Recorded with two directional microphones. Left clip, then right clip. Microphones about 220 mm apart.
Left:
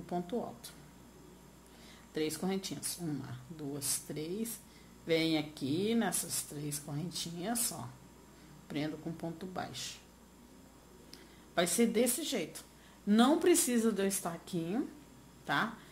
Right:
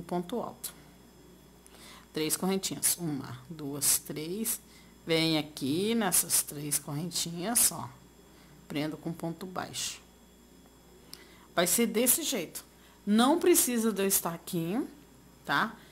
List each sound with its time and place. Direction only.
0.0 s speech: 20° right (ahead or behind)
1.9 s speech: 20° right (ahead or behind)
11.1 s speech: 15° right (ahead or behind)